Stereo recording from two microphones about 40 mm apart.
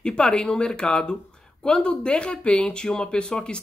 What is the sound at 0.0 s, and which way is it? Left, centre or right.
Speech, left.